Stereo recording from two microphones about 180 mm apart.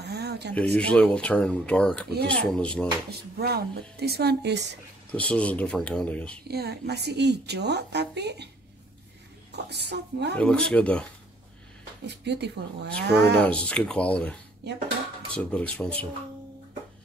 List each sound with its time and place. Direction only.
0.0 s a sound: 65° right (ahead or behind)
0.7 s speech: 5° left (ahead or behind)
3.1 s speech: 60° right (ahead or behind)
5.1 s speech: 5° left (ahead or behind)
6.4 s a woman's voice: 60° right (ahead or behind)
9.5 s a woman's voice: 70° right (ahead or behind)
10.3 s speech: 5° left (ahead or behind)
12.3 s a woman's voice: 70° right (ahead or behind)
13.4 s speech: 5° left (ahead or behind)
15.3 s speech: 5° left (ahead or behind)